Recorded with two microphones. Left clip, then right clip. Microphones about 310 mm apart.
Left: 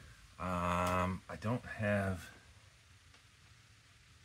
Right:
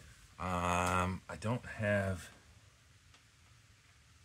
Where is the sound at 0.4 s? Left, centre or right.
Right.